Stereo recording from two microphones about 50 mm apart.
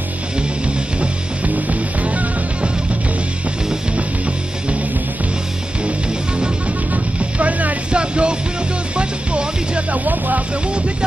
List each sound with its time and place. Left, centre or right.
1.0 s music: right
6.9 s music: right
10.0 s a sound: right